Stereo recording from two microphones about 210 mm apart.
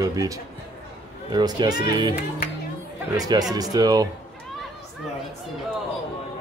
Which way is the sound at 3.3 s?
20° right (ahead or behind).